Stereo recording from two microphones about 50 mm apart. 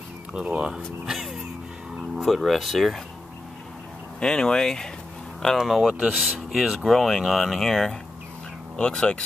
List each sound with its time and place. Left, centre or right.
0.3 s speech: centre
1.1 s music: centre
2.1 s speech: centre
4.2 s speech: centre
5.6 s speech: centre
8.7 s speech: centre